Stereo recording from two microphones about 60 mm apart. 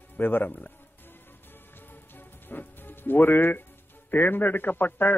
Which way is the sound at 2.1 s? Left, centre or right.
Left.